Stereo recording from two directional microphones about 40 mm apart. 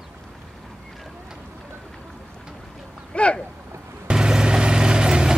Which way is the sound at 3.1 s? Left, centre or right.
Left.